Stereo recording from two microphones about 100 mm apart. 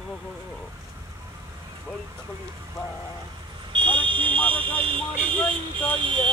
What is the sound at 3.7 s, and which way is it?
Speech, 55° right (ahead or behind).